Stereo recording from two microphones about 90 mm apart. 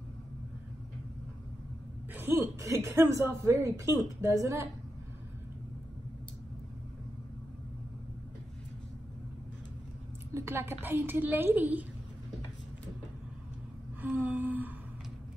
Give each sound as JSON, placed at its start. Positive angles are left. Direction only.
{"t": 2.1, "sound": "speech", "side_deg": -25}
{"t": 10.3, "sound": "a woman's voice", "side_deg": -30}
{"t": 14.0, "sound": "a sound", "side_deg": -20}